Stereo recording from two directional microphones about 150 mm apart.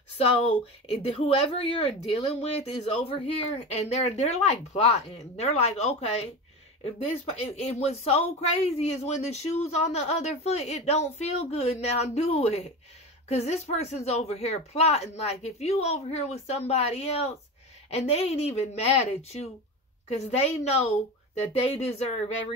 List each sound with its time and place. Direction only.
0.2 s speech: 40° left (ahead or behind)
7.4 s speech: 45° left (ahead or behind)